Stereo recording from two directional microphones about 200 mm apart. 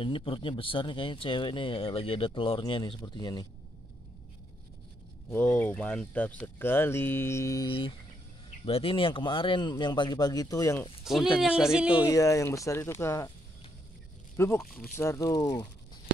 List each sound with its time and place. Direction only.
0.0 s speech: 25° left (ahead or behind)
5.3 s speech: 10° left (ahead or behind)
11.1 s speech: centre (ahead or behind)
12.1 s speech: 15° left (ahead or behind)
14.3 s speech: 15° left (ahead or behind)
14.6 s speech: centre (ahead or behind)
15.0 s speech: 15° left (ahead or behind)